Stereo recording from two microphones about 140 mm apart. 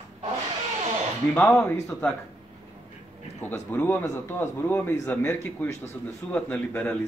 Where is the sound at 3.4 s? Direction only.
15° left (ahead or behind).